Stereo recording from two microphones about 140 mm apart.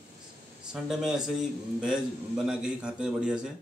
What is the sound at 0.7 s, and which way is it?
A man's voice, 5° right (ahead or behind).